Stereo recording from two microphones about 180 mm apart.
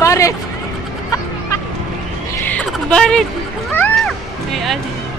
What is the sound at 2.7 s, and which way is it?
Music, 5° left (ahead or behind).